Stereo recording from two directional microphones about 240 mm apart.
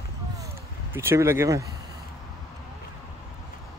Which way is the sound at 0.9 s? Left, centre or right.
Centre.